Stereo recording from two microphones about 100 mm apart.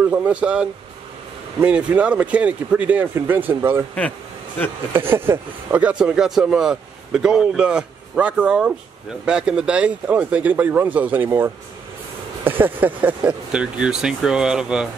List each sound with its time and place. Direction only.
0.0 s speech: 15° right (ahead or behind)
4.9 s speech: 20° right (ahead or behind)